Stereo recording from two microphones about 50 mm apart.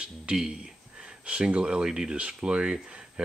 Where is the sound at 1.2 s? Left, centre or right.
Right.